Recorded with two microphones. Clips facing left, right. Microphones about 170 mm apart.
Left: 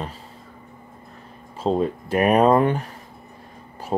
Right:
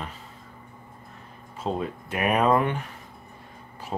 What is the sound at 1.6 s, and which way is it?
Speech, 30° left (ahead or behind).